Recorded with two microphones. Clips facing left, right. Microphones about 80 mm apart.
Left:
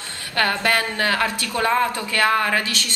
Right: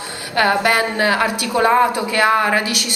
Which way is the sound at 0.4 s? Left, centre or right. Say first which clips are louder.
Right 5 dB; centre.